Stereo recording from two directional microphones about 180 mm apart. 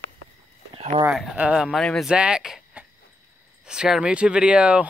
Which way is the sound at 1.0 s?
5° right (ahead or behind).